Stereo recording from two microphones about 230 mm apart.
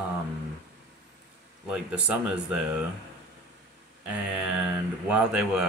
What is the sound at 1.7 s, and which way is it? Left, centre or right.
Speech, centre.